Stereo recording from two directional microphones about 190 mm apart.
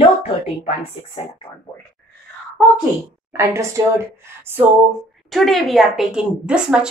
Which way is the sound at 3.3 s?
15° right (ahead or behind).